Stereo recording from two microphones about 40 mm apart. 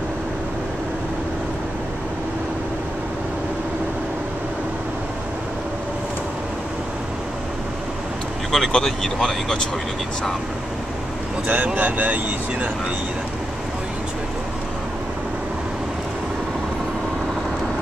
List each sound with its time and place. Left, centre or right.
8.5 s speech: centre
11.4 s speech: right